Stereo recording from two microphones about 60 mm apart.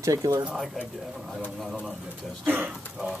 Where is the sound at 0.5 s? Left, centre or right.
Centre.